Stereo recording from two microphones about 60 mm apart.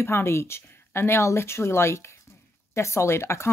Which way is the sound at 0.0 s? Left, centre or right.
Left.